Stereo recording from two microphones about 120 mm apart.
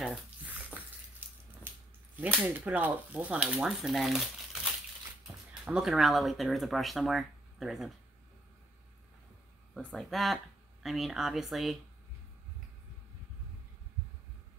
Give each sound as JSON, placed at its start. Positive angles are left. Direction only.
{"t": 0.0, "sound": "a sound", "side_deg": -5}
{"t": 2.1, "sound": "speech", "side_deg": -15}
{"t": 5.7, "sound": "speech", "side_deg": -5}
{"t": 9.9, "sound": "speech", "side_deg": 0}